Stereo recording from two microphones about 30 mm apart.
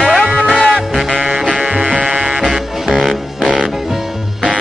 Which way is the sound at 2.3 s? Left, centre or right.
Centre.